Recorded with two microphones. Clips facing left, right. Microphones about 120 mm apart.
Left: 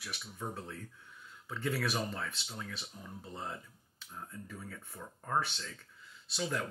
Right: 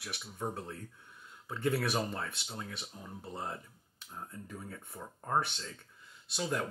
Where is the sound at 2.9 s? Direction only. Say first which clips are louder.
Right 1 dB; 50° right (ahead or behind).